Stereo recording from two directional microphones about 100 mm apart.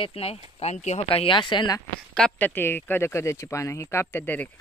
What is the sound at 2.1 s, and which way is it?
Speech, 10° left (ahead or behind).